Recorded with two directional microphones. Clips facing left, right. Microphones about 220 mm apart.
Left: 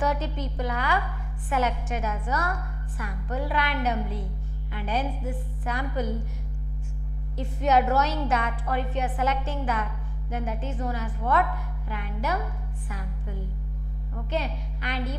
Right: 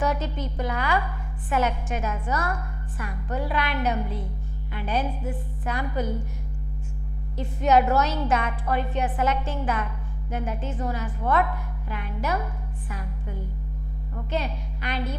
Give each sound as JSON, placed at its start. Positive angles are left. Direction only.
{"t": 0.0, "sound": "a woman's voice", "side_deg": -10}
{"t": 7.3, "sound": "a woman's voice", "side_deg": -10}
{"t": 14.3, "sound": "a woman's voice", "side_deg": -10}